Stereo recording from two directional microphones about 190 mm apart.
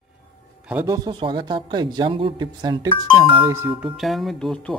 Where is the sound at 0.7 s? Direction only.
10° right (ahead or behind).